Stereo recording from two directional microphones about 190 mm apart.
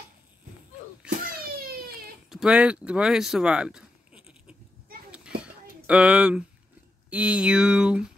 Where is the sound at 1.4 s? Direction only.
50° right (ahead or behind).